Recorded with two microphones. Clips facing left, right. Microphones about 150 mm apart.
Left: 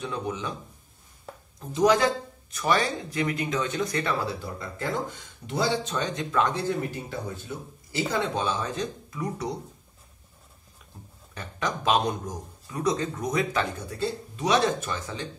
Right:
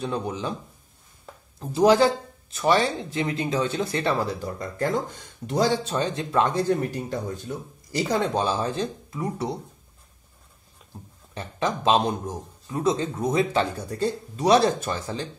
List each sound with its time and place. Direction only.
0.0 s speech: 30° right (ahead or behind)
1.7 s a man's voice: 30° right (ahead or behind)
4.3 s speech: 45° right (ahead or behind)
6.9 s speech: 40° right (ahead or behind)
11.3 s a man's voice: 30° right (ahead or behind)